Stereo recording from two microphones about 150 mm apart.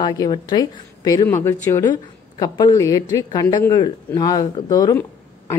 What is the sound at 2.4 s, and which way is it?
A woman's voice, 25° left (ahead or behind).